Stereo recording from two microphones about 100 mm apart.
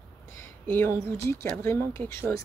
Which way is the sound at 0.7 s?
20° left (ahead or behind).